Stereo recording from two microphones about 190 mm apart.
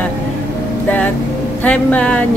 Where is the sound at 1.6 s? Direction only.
5° left (ahead or behind).